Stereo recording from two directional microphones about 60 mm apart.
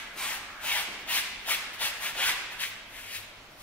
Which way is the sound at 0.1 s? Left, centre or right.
Centre.